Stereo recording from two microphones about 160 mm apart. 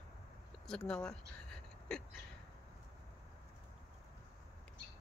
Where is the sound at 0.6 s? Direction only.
5° left (ahead or behind).